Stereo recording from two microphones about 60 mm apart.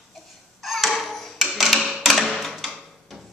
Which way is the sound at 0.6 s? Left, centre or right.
Centre.